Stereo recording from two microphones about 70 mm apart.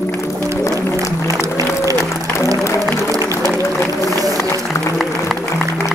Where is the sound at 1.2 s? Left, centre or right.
Right.